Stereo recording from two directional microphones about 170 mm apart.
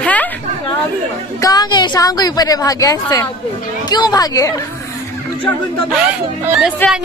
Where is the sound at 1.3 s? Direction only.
20° left (ahead or behind).